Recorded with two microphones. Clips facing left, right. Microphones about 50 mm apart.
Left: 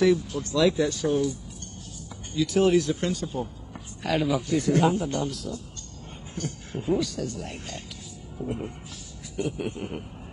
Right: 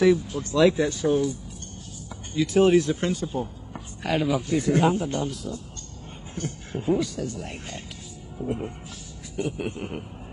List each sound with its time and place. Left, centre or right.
0.0 s speech: centre
0.4 s speech: right
6.3 s speech: right
7.2 s speech: centre
9.7 s speech: right